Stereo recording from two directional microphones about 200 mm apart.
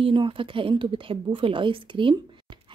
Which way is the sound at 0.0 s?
25° right (ahead or behind).